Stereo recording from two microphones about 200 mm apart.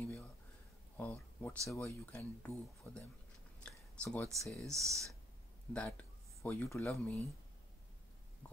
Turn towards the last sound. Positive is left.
turn(degrees=10)  # may be behind; listen again after turning